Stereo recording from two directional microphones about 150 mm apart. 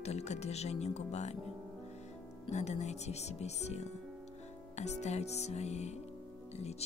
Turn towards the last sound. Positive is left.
turn(degrees=45)  # may be behind; listen again after turning